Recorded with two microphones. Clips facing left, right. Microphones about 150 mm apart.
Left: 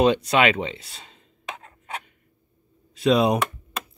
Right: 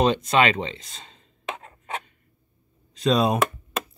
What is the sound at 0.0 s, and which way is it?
Speech, 10° left (ahead or behind).